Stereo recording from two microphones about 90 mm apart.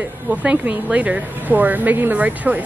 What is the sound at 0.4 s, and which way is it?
A woman's voice, 15° right (ahead or behind).